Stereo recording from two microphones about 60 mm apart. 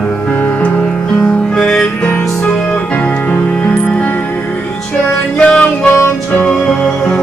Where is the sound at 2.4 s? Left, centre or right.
Left.